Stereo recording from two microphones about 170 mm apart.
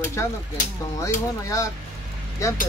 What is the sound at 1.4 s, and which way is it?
Speech, 20° left (ahead or behind).